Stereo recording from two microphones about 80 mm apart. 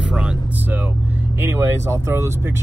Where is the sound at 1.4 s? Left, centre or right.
Right.